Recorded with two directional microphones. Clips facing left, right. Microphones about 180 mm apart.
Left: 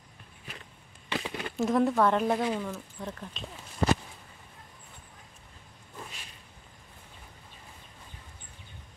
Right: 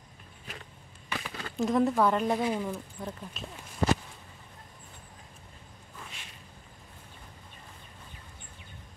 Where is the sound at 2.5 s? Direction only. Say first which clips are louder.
Right 1 dB; 10° right (ahead or behind).